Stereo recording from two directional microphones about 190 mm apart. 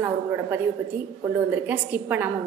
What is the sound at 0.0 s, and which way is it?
A woman's voice, 10° right (ahead or behind).